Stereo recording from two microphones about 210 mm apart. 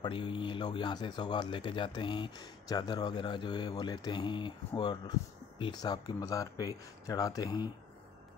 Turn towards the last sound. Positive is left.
turn(degrees=20)  # may be behind; listen again after turning